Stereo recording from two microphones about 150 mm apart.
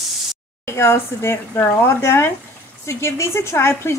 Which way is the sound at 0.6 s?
15° left (ahead or behind).